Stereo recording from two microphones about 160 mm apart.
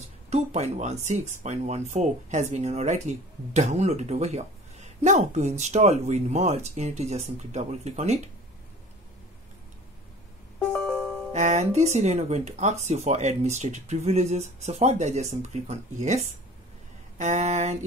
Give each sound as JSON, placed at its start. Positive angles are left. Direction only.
{"t": 0.0, "sound": "speech", "side_deg": -45}
{"t": 10.7, "sound": "music", "side_deg": 5}
{"t": 11.3, "sound": "speech", "side_deg": -45}